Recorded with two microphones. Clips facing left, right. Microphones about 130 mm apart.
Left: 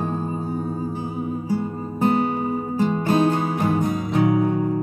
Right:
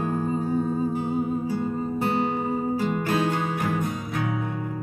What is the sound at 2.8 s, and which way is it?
Music, 30° left (ahead or behind).